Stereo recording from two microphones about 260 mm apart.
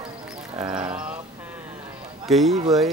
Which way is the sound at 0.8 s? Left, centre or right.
Centre.